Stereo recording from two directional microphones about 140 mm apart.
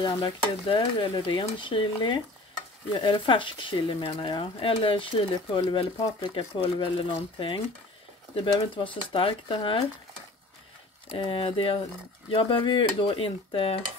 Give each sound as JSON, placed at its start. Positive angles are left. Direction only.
{"t": 0.0, "sound": "speech", "side_deg": 35}
{"t": 11.1, "sound": "speech", "side_deg": 40}